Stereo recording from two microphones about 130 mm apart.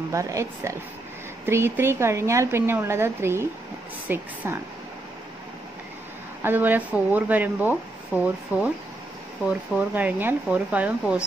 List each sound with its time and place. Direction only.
0.1 s speech: 25° right (ahead or behind)
6.4 s speech: 15° right (ahead or behind)